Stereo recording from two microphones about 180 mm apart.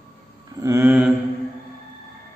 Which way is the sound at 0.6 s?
15° right (ahead or behind).